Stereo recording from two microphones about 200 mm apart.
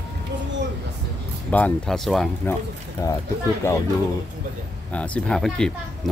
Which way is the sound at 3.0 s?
15° left (ahead or behind).